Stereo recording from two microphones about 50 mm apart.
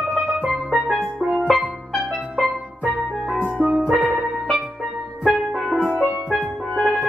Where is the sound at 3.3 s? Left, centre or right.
Right.